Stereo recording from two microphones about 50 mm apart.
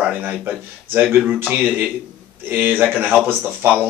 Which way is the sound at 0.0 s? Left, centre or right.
Right.